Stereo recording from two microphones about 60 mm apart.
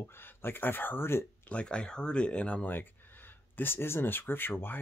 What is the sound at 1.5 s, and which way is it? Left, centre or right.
Speech, centre.